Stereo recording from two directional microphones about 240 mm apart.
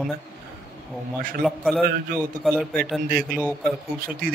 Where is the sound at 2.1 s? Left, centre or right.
Right.